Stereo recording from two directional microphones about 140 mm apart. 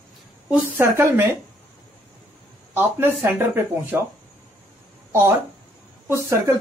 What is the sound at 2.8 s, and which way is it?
Speech, 15° right (ahead or behind).